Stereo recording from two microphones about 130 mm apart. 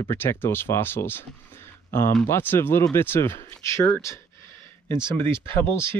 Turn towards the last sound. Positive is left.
turn(degrees=20)  # may be behind; listen again after turning